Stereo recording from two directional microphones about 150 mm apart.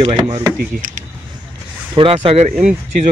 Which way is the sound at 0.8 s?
60° right (ahead or behind).